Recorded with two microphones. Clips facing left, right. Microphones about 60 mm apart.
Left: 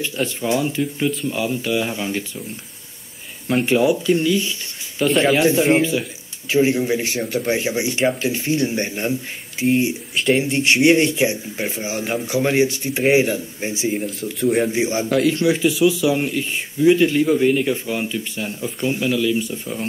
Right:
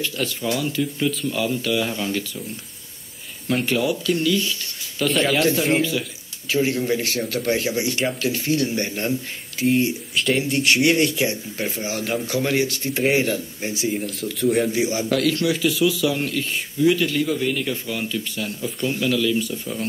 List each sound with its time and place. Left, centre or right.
0.0 s a man's voice: left
3.4 s speech: centre
5.0 s speech: centre
5.4 s a man's voice: centre
14.4 s speech: centre
14.7 s a man's voice: left